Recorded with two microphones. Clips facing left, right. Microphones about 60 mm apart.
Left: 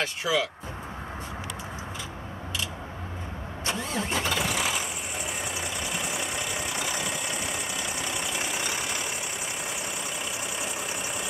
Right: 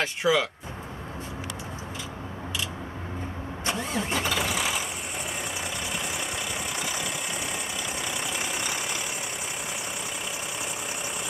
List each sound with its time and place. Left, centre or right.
0.0 s speech: right
3.6 s vehicle: centre